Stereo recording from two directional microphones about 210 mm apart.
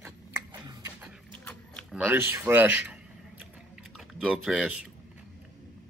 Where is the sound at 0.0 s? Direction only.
15° right (ahead or behind).